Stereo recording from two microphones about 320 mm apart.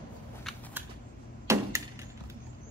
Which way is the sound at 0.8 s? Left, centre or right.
Centre.